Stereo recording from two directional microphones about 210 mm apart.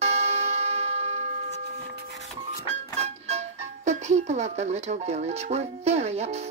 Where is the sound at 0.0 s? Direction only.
30° right (ahead or behind).